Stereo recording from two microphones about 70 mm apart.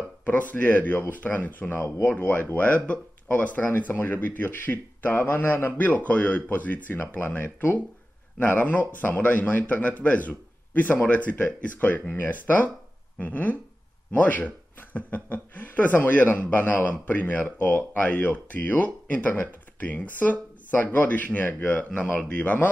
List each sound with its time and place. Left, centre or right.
0.2 s speech: left